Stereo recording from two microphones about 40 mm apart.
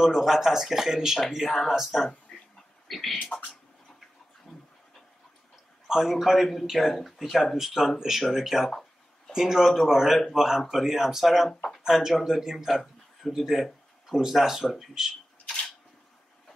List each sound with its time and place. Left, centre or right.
0.0 s speech: centre
2.3 s a sound: centre
2.9 s speech: centre
4.5 s pant: centre
5.9 s a man's voice: centre